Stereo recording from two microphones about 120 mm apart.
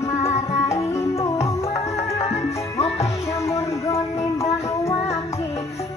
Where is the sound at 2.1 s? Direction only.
60° left (ahead or behind).